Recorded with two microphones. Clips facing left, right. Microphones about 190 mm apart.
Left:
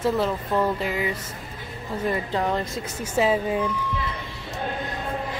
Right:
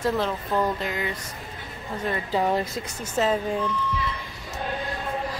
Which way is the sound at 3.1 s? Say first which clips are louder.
Left 2 dB; 10° left (ahead or behind).